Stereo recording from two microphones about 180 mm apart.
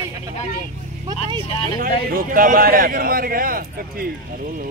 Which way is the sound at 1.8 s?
50° right (ahead or behind).